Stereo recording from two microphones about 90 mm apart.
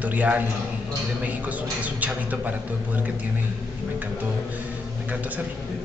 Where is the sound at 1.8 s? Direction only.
15° right (ahead or behind).